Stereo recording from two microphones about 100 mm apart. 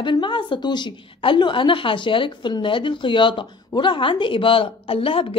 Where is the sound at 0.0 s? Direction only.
50° left (ahead or behind).